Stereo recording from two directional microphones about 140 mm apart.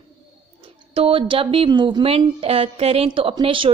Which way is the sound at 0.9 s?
40° right (ahead or behind).